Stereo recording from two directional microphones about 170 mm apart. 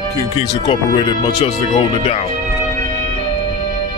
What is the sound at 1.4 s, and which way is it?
Music, 40° left (ahead or behind).